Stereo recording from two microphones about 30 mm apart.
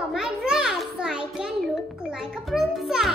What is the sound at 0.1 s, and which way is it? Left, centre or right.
Children playing, right.